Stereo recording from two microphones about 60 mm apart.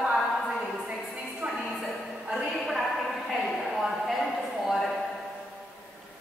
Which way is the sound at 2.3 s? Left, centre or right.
Centre.